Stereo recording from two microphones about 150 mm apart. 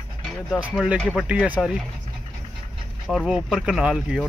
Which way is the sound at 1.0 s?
5° left (ahead or behind).